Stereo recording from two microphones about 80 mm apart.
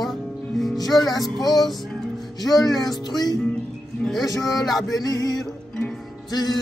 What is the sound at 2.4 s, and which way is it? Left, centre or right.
Music, left.